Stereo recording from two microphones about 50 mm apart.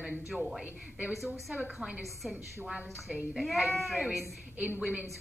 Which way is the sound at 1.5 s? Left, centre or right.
Centre.